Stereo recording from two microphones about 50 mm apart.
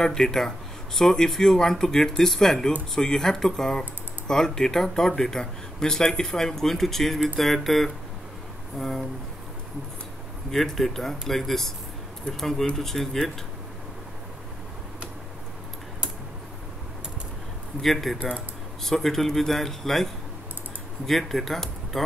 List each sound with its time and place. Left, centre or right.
0.0 s speech: centre
10.5 s speech: centre
17.8 s speech: centre